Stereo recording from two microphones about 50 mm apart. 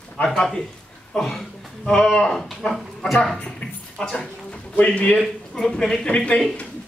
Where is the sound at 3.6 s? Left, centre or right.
Left.